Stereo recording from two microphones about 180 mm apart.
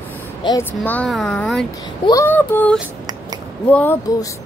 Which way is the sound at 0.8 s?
5° left (ahead or behind).